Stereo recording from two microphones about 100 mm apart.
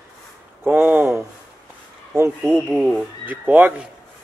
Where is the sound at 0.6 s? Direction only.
20° right (ahead or behind).